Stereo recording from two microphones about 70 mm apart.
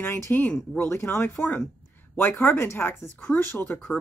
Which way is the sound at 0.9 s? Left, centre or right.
Left.